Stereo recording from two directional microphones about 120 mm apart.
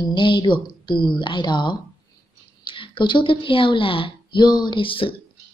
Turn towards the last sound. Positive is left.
turn(degrees=45)  # may be behind; listen again after turning